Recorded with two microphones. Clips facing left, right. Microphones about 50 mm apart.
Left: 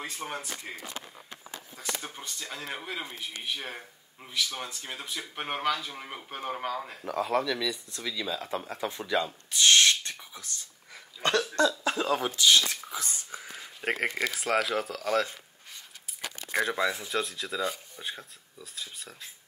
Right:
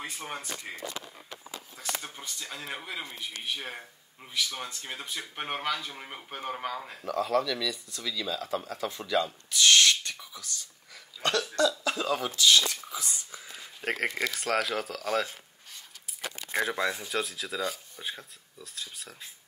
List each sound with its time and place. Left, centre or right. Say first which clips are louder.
0.2 s speech: left 3 dB; centre
0.9 s a sound: right 1 dB; left
2.1 s speech: left 1 dB; centre
7.1 s speech: right 1 dB; left
11.2 s cough: left 1 dB; left
11.8 s speech: left 2 dB; left
12.6 s dog: even; left
13.6 s a sound: left 1 dB; centre
14.3 s speech: left 1 dB; centre
16.1 s a sound: right 1 dB; centre
16.6 s speech: left 1 dB; centre